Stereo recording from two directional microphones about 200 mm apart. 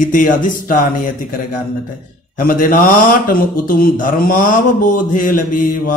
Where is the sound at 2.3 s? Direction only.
45° left (ahead or behind).